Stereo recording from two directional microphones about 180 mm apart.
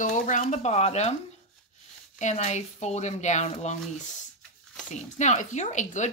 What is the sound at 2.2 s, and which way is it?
A woman's voice, 40° left (ahead or behind).